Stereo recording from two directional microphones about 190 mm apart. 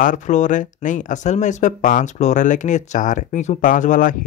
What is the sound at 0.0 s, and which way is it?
Speech, 40° left (ahead or behind).